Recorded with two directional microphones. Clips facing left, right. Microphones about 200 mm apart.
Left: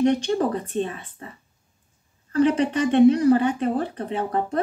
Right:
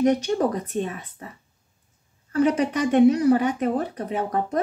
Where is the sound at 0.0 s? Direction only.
10° right (ahead or behind).